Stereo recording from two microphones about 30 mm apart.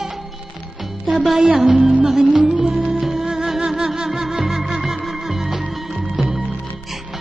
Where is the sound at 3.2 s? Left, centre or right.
Right.